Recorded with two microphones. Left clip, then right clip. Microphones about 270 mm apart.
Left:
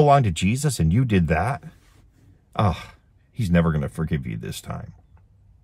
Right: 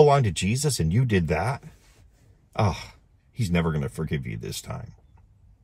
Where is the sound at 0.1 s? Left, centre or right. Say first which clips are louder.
Left 4 dB; centre.